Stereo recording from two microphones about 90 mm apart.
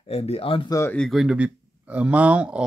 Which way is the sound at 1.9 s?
15° right (ahead or behind).